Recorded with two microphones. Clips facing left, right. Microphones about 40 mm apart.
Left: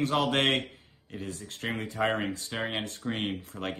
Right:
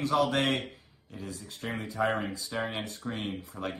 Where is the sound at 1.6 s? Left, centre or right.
Left.